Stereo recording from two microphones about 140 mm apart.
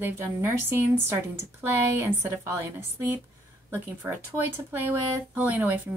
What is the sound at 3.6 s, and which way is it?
Speech, 15° right (ahead or behind).